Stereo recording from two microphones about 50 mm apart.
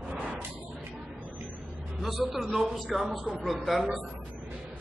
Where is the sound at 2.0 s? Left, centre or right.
Centre.